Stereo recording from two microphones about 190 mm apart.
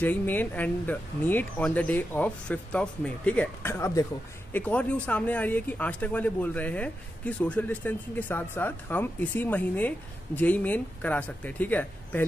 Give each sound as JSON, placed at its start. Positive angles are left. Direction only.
{"t": 0.0, "sound": "speech", "side_deg": 10}